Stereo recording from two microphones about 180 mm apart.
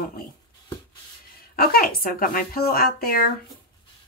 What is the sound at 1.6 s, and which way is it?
Speech, 55° left (ahead or behind).